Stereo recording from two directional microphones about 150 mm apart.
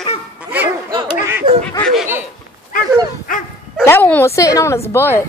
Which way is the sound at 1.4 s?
35° right (ahead or behind).